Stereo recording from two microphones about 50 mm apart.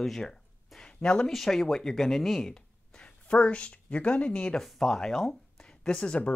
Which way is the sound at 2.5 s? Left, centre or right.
Centre.